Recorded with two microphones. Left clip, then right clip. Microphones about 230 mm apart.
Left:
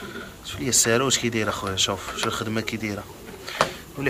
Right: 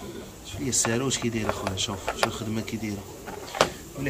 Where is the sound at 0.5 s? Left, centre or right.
Centre.